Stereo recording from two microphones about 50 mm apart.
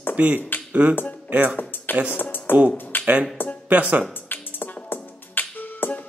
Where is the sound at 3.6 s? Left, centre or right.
Right.